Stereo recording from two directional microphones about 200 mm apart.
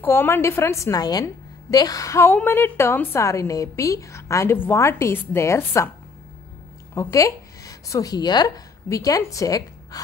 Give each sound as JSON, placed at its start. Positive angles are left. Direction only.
{"t": 0.0, "sound": "a woman's voice", "side_deg": 10}
{"t": 7.0, "sound": "speech", "side_deg": 15}